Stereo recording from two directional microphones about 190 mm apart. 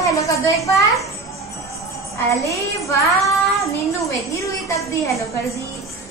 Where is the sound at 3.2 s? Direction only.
15° left (ahead or behind).